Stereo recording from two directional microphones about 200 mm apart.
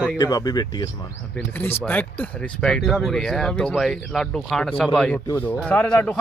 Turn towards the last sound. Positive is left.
turn(degrees=5)  # may be behind; listen again after turning